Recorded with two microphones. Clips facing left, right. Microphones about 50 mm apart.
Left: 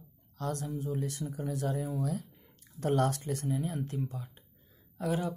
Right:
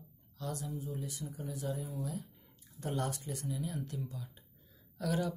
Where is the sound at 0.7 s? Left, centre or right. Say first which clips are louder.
Left 6 dB; left.